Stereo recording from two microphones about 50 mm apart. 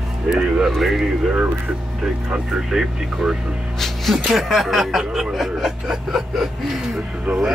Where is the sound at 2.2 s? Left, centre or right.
Centre.